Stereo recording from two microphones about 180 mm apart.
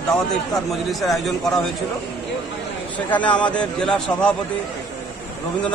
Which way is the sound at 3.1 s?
10° left (ahead or behind).